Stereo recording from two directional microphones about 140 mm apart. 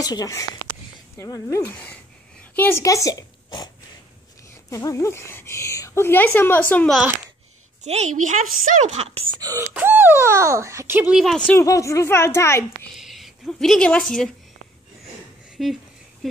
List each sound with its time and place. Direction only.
0.0 s a woman's voice: 25° left (ahead or behind); by 2.8 s 10° left (ahead or behind)
2.8 s speech: 25° left (ahead or behind)
7.8 s a woman's voice: 55° right (ahead or behind)
9.4 s speech: 25° right (ahead or behind)
9.8 s speech: 15° right (ahead or behind); by 11.5 s 5° left (ahead or behind)
11.5 s a woman's voice: 20° left (ahead or behind)
12.9 s speech: centre (ahead or behind)
15.5 s a sound: centre (ahead or behind)